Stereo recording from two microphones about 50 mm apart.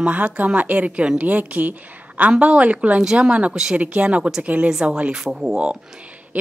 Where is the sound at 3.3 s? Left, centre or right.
Right.